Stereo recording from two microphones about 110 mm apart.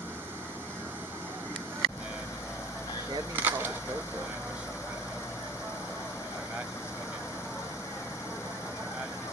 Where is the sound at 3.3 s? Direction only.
20° right (ahead or behind).